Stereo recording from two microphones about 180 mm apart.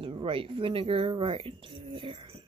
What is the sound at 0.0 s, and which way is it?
Speech, 30° right (ahead or behind).